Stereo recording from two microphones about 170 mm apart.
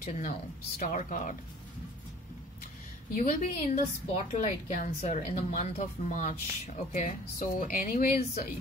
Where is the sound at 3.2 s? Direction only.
50° left (ahead or behind).